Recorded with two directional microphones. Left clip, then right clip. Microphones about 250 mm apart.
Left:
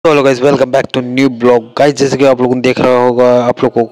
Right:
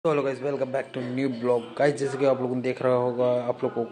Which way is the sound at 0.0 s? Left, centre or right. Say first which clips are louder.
Left 17 dB; left.